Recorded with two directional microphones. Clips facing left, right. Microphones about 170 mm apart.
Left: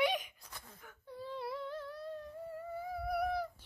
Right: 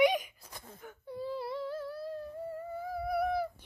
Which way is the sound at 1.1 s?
10° right (ahead or behind).